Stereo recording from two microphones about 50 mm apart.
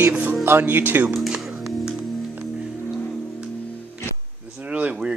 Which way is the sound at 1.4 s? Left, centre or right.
Centre.